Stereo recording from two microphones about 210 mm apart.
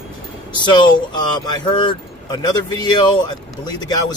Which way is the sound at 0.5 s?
20° left (ahead or behind).